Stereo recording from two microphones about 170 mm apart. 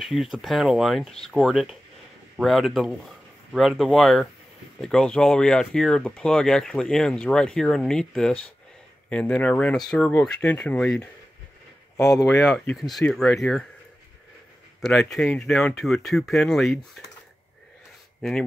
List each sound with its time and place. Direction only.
0.0 s speech: centre (ahead or behind)
12.0 s speech: 20° left (ahead or behind)
12.4 s speech: centre (ahead or behind)
14.8 s speech: centre (ahead or behind)